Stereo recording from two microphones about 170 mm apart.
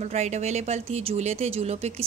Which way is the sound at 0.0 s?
40° right (ahead or behind).